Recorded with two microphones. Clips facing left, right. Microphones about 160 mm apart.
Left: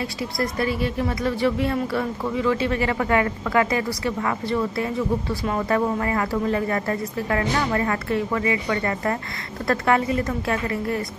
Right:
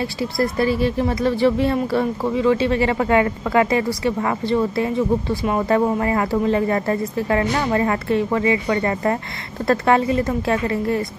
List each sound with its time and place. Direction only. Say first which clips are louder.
0.0 s speech: right 5 dB; 30° right (ahead or behind)